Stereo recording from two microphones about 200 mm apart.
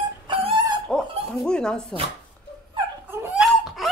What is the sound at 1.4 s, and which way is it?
Speech, 5° left (ahead or behind).